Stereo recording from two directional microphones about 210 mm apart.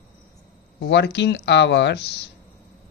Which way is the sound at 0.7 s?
55° left (ahead or behind).